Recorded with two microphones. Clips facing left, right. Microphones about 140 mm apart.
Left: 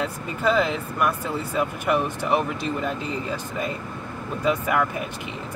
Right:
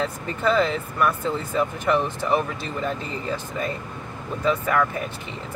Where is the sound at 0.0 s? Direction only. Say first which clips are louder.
Even; 10° left (ahead or behind).